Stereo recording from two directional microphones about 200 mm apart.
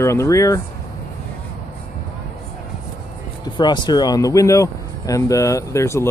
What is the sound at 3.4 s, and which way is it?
Speech, 20° left (ahead or behind).